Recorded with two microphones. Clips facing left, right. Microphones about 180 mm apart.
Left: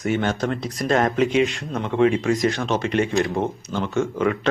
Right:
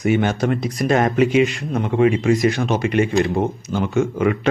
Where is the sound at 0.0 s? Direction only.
10° right (ahead or behind).